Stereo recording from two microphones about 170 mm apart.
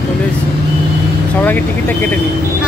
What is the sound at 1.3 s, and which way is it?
Speech, 10° left (ahead or behind).